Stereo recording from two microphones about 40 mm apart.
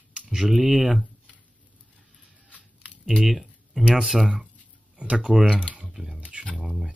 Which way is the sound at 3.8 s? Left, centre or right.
Centre.